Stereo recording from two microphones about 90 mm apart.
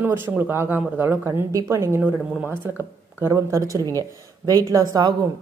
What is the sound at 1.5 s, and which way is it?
A woman's voice, 35° right (ahead or behind).